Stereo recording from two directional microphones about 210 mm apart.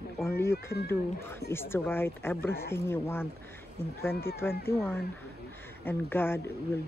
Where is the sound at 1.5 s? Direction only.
10° left (ahead or behind).